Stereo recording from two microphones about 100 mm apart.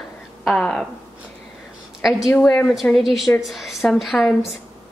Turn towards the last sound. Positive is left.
turn(degrees=0)  # may be behind; listen again after turning